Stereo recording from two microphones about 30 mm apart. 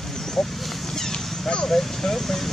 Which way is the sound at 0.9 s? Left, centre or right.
Centre.